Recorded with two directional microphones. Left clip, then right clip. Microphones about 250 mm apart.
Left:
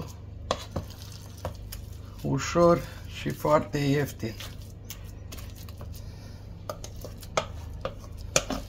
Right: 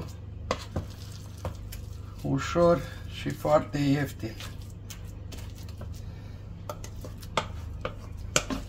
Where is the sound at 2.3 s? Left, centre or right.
Left.